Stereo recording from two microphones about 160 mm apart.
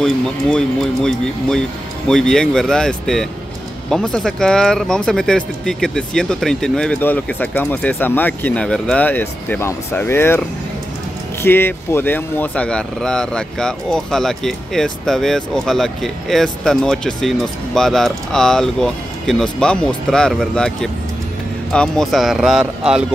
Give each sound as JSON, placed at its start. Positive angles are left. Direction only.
{"t": 0.0, "sound": "speech", "side_deg": 5}
{"t": 11.4, "sound": "speech", "side_deg": 15}